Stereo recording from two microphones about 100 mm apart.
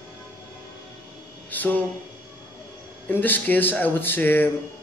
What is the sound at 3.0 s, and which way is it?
Speech, 20° left (ahead or behind).